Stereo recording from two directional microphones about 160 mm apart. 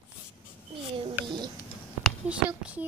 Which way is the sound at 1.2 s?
10° right (ahead or behind).